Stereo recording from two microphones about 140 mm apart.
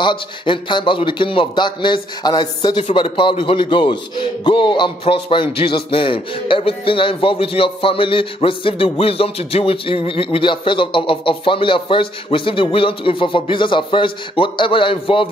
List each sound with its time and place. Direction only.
0.0 s speech: 35° left (ahead or behind)